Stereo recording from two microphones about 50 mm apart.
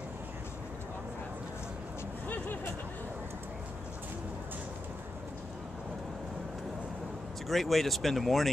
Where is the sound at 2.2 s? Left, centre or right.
Left.